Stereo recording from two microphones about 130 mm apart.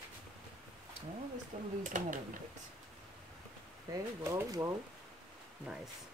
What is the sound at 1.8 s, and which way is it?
Speech, 90° right.